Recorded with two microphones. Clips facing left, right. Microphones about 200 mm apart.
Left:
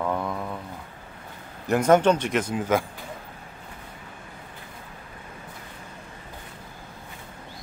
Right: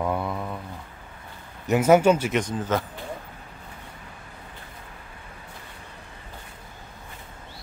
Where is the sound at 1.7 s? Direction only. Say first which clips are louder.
Right 1 dB; 5° right (ahead or behind).